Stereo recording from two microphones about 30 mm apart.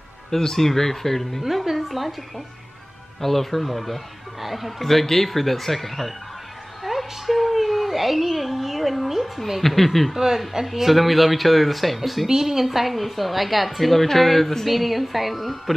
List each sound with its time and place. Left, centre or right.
0.6 s speech: centre
1.4 s speech: centre
6.8 s a sound: centre
9.6 s speech: centre
10.1 s a woman's voice: centre
12.3 s a woman's voice: centre
12.6 s speech: centre